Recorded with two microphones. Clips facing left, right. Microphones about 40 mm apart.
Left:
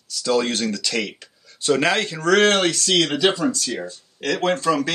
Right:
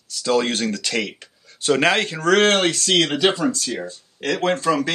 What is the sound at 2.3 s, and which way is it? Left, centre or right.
Speech, centre.